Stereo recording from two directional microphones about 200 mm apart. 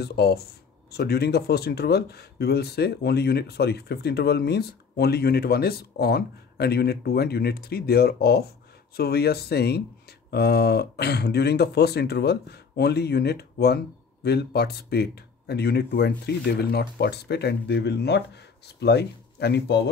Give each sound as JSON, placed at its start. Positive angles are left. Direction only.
{"t": 0.0, "sound": "speech", "side_deg": 55}